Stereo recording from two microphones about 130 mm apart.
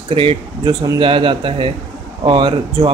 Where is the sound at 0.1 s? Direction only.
45° right (ahead or behind).